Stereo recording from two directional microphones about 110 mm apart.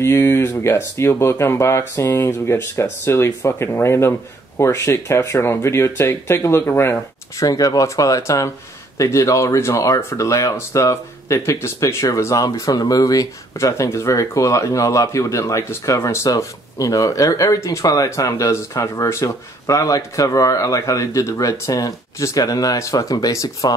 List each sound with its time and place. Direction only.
0.0 s speech: 20° left (ahead or behind)